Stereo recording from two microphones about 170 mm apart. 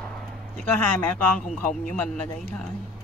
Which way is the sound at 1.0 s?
10° left (ahead or behind).